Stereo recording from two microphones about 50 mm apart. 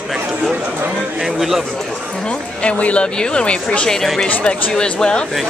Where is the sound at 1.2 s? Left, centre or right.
Centre.